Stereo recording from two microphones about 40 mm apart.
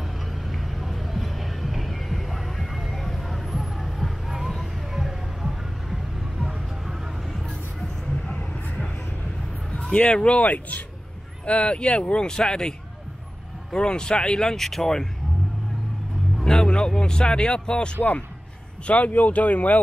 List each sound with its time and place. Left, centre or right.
0.3 s vehicle: centre
4.0 s music: centre
7.4 s music: centre
9.9 s speech: left
11.4 s speech: left
13.7 s speech: left
14.6 s speech: centre
16.4 s speech: centre
18.9 s speech: left